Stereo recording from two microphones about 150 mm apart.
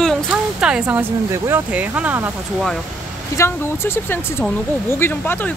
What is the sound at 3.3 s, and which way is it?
Speech, 20° left (ahead or behind).